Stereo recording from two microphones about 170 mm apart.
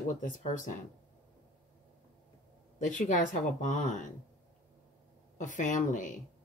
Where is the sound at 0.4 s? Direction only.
45° left (ahead or behind).